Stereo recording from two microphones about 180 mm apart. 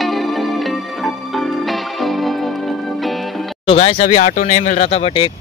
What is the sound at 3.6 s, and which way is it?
Speech, 35° left (ahead or behind).